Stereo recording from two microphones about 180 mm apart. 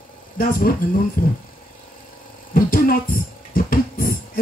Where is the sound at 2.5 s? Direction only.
50° left (ahead or behind).